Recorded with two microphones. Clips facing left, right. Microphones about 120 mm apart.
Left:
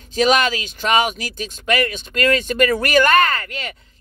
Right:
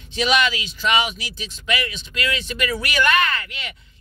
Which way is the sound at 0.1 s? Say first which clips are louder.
Left 4 dB; 40° left (ahead or behind).